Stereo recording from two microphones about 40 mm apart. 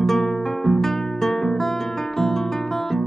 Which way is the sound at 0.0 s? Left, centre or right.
Centre.